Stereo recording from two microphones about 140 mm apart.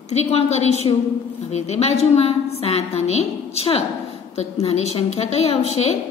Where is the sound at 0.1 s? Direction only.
50° left (ahead or behind).